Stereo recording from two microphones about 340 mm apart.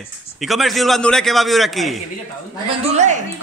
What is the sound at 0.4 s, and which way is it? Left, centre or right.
Speech, centre.